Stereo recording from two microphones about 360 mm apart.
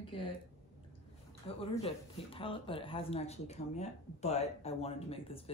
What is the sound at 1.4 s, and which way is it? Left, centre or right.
Speech, centre.